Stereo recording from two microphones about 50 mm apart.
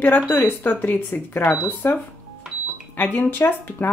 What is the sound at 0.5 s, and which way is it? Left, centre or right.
Speech, left.